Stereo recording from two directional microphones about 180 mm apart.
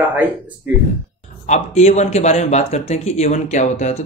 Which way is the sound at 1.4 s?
40° left (ahead or behind).